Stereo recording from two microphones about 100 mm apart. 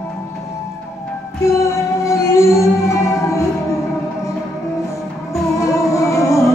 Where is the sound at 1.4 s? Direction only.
30° left (ahead or behind).